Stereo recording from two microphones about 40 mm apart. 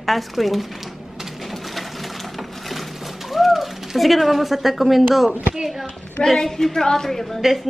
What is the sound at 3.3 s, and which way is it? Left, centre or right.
Speech, centre.